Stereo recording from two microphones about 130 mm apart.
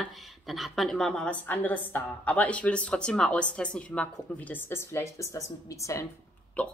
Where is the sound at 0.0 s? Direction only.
Centre (ahead or behind); by 6.0 s 25° left (ahead or behind).